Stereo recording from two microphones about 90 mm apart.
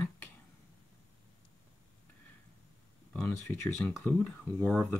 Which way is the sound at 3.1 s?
20° left (ahead or behind).